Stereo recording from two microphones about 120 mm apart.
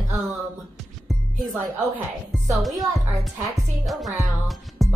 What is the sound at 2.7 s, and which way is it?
Speech, 30° right (ahead or behind).